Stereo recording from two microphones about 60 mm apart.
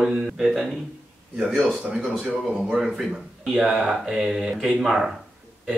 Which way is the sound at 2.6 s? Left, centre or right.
Centre.